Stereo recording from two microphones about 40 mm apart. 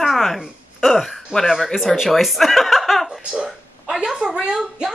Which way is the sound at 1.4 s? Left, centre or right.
Centre.